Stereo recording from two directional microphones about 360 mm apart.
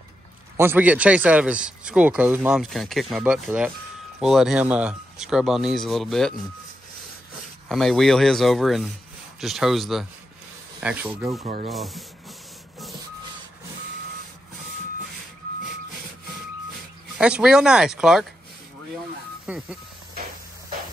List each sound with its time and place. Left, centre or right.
0.6 s speech: centre
7.6 s speech: centre
11.4 s speech: centre
11.7 s speech: centre
17.2 s speech: centre
19.4 s speech: centre